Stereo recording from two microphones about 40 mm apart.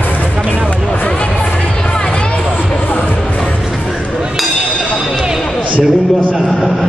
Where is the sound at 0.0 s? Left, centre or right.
Left.